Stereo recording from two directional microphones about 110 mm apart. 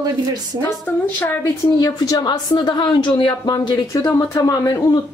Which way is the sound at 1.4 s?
35° left (ahead or behind).